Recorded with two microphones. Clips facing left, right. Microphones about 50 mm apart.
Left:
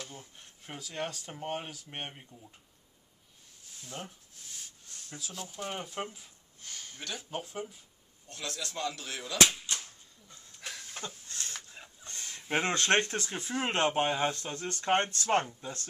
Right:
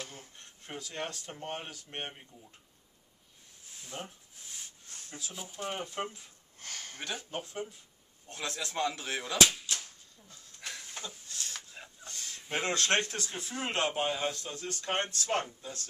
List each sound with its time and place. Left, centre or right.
0.4 s speech: centre
3.8 s speech: centre
5.1 s speech: centre
6.6 s a sound: right
7.3 s speech: centre
8.3 s speech: right
10.6 s a sound: centre
11.2 s a sound: left
12.5 s speech: left